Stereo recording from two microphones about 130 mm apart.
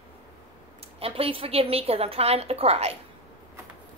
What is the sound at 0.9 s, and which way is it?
A woman's voice, 50° right (ahead or behind).